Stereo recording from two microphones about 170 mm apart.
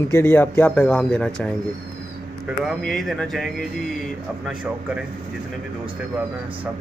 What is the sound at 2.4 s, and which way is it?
Speech, centre (ahead or behind).